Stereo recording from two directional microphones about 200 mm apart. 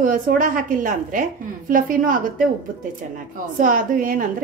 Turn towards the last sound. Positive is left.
turn(degrees=-45)  # may be behind; listen again after turning